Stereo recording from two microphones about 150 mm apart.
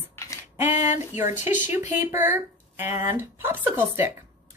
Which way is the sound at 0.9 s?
15° right (ahead or behind).